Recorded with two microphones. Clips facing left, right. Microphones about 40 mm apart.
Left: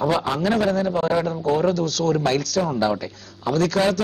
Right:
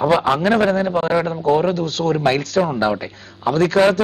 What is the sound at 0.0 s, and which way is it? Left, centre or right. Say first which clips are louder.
A man's voice: right 5 dB; right.